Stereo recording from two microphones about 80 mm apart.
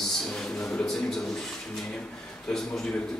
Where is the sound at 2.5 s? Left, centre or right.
Centre.